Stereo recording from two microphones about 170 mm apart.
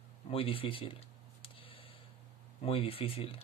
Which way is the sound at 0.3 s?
35° left (ahead or behind).